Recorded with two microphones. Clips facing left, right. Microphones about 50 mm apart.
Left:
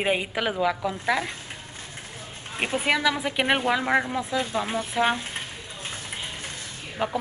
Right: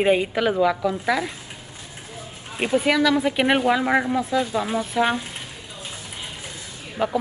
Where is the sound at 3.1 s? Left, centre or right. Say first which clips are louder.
Right 5 dB; centre.